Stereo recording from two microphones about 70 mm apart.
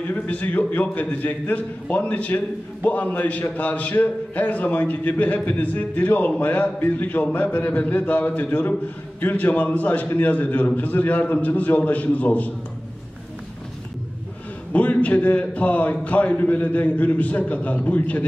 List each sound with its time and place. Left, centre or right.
0.1 s a man's voice: left
14.7 s a man's voice: left